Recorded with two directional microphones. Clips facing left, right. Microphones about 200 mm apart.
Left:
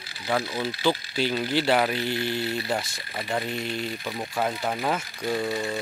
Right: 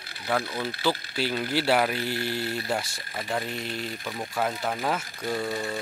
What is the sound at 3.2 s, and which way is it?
Speech, 5° left (ahead or behind).